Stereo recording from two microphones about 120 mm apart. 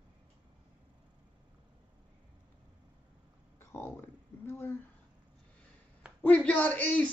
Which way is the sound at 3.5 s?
20° left (ahead or behind).